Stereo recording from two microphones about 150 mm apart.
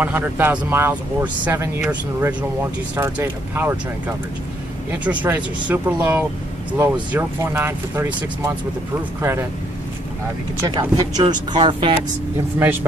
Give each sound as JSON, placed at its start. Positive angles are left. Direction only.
{"t": 0.0, "sound": "speech", "side_deg": -10}
{"t": 4.9, "sound": "speech", "side_deg": -10}
{"t": 10.7, "sound": "speech", "side_deg": -25}